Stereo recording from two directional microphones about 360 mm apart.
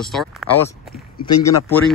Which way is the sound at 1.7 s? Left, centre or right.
Centre.